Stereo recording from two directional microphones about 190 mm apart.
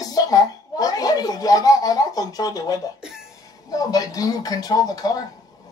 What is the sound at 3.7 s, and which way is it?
A woman's voice, 20° left (ahead or behind).